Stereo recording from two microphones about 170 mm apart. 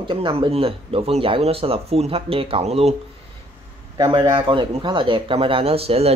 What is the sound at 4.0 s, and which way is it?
Speech, 30° right (ahead or behind).